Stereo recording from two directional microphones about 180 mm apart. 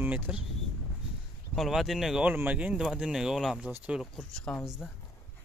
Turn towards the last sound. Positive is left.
turn(degrees=5)  # may be behind; listen again after turning